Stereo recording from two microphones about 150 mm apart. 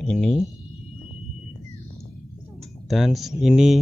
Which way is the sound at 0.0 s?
5° left (ahead or behind).